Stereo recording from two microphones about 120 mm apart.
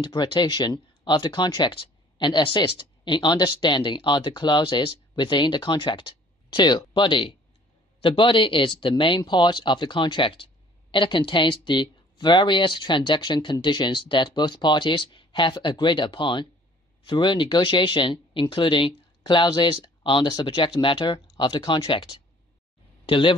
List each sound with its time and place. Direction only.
0.0 s speech: 40° left (ahead or behind)